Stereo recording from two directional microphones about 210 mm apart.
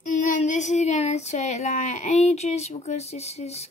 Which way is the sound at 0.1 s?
35° left (ahead or behind).